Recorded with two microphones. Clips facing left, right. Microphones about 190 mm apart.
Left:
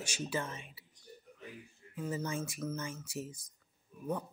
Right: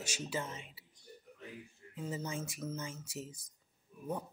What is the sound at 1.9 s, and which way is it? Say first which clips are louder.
Speech: left 3 dB; 20° right (ahead or behind).